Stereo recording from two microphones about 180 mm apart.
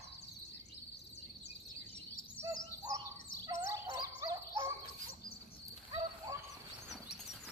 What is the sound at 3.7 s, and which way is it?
Turkey, 20° right (ahead or behind).